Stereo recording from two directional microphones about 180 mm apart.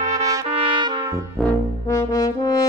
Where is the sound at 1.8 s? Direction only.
20° left (ahead or behind).